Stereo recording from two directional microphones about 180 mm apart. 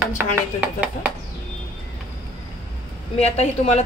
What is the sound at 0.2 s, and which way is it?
Speech, 5° right (ahead or behind).